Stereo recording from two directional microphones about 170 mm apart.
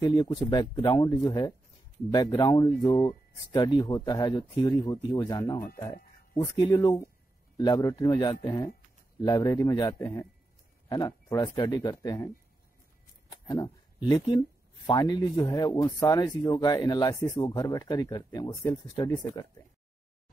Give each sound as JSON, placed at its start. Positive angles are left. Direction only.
{"t": 0.0, "sound": "speech", "side_deg": 25}
{"t": 13.5, "sound": "speech", "side_deg": 25}